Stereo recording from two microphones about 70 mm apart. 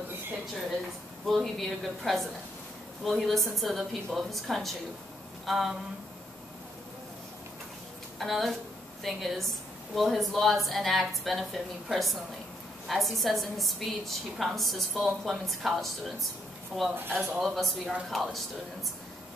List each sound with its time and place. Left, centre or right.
1.2 s a woman's voice: centre
8.2 s a woman's voice: centre
16.9 s speech: right
17.4 s a woman's voice: centre